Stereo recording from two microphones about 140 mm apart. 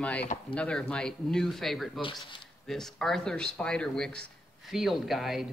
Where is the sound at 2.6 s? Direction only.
5° left (ahead or behind).